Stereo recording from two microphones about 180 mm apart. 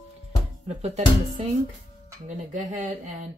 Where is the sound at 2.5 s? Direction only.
45° right (ahead or behind).